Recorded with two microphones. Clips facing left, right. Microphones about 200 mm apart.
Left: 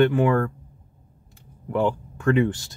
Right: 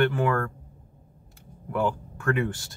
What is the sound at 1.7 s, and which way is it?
Speech, 20° left (ahead or behind).